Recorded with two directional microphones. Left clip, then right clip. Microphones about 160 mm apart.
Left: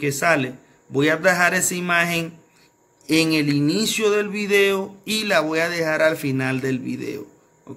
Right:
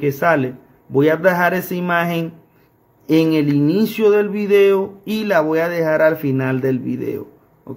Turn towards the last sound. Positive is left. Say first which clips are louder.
# right 5 dB
turn(degrees=-35)  # may be behind; listen again after turning